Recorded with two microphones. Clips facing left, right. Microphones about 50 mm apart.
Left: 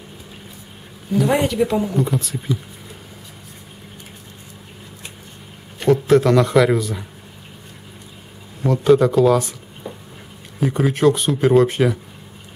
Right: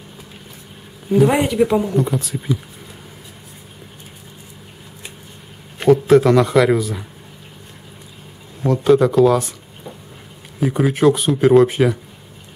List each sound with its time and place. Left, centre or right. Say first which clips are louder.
1.1 s speech: right 4 dB; right
1.4 s speech: right 2 dB; centre
5.9 s speech: right 3 dB; centre
8.6 s speech: right 1 dB; centre
10.6 s speech: right 1 dB; centre